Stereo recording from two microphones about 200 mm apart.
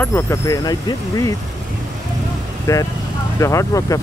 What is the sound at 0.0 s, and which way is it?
Speech, 15° left (ahead or behind).